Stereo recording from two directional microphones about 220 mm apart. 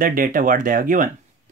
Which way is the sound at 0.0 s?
40° right (ahead or behind).